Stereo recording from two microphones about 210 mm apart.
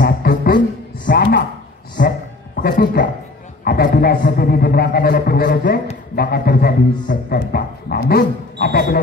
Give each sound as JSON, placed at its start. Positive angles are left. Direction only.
{"t": 0.0, "sound": "music", "side_deg": 45}
{"t": 1.0, "sound": "a woman's voice", "side_deg": 50}
{"t": 2.0, "sound": "a sound", "side_deg": 45}
{"t": 3.6, "sound": "a man's voice", "side_deg": 45}